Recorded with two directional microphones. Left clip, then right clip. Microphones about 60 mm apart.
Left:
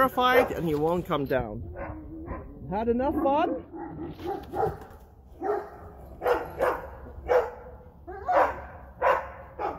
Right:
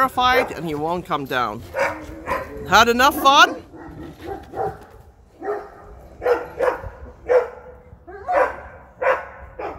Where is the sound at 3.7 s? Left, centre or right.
Right.